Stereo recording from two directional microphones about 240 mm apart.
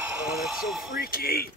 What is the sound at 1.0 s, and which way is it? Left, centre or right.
Speech, left.